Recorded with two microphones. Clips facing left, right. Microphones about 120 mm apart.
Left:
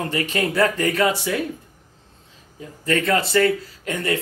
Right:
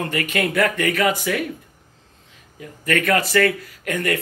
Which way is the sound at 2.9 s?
25° left (ahead or behind).